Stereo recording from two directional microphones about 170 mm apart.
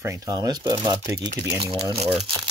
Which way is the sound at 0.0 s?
20° right (ahead or behind).